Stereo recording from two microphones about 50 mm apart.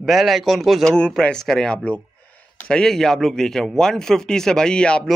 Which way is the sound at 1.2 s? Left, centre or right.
Centre.